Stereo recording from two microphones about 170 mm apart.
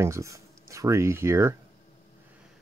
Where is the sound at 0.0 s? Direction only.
15° right (ahead or behind).